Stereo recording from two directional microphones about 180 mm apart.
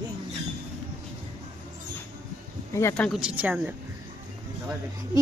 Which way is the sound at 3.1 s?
5° right (ahead or behind).